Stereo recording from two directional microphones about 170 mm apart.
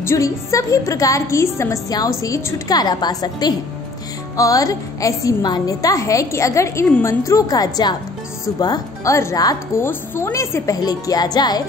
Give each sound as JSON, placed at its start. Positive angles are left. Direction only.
{"t": 0.0, "sound": "a woman's voice", "side_deg": 15}